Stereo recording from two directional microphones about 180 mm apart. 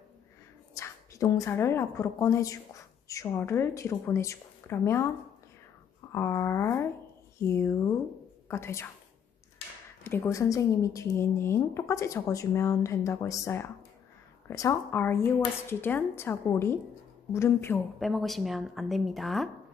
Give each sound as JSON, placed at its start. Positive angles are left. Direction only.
{"t": 0.7, "sound": "a woman's voice", "side_deg": 15}
{"t": 6.1, "sound": "a woman's voice", "side_deg": 15}
{"t": 10.0, "sound": "a woman's voice", "side_deg": 15}
{"t": 14.5, "sound": "a woman's voice", "side_deg": 15}
{"t": 17.9, "sound": "speech", "side_deg": 0}